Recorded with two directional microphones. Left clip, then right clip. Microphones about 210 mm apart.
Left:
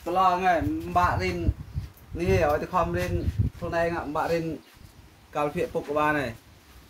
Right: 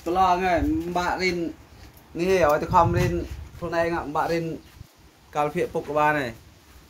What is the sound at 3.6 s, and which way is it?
Speech, 40° right (ahead or behind).